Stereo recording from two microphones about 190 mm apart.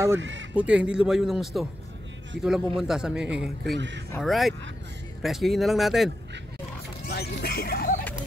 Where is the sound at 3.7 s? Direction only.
65° right (ahead or behind).